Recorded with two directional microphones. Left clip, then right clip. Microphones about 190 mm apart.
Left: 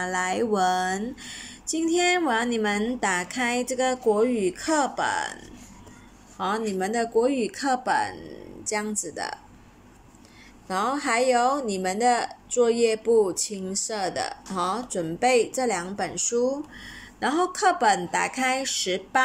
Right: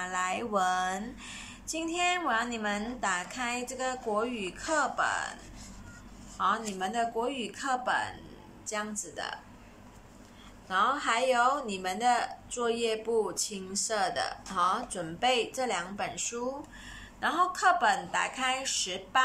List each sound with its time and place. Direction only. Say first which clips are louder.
0.0 s speech: left 6 dB; 25° left (ahead or behind)
6.3 s speech: left 3 dB; 25° left (ahead or behind)
10.7 s speech: left 2 dB; 25° left (ahead or behind)